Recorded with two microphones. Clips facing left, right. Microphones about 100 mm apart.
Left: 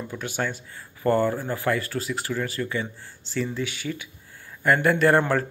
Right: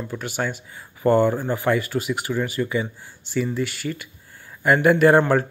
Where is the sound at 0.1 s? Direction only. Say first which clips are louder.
Right 2 dB; 5° right (ahead or behind).